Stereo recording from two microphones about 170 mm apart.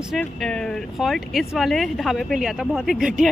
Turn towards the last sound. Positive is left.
turn(degrees=0)  # may be behind; listen again after turning